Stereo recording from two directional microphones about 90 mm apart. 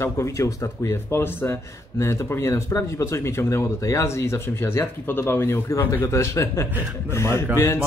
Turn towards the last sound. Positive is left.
turn(degrees=35)  # may be behind; listen again after turning